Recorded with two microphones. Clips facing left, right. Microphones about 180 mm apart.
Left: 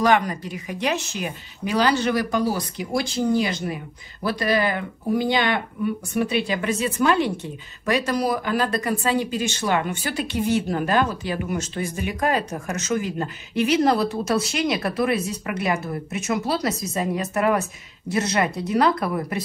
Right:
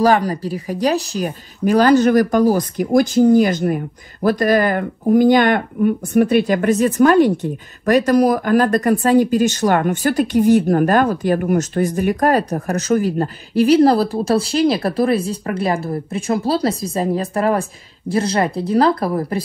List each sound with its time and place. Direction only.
0.0 s a woman's voice: 35° right (ahead or behind)